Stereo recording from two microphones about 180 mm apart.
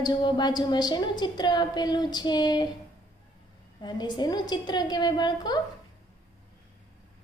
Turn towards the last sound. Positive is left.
turn(degrees=25)  # may be behind; listen again after turning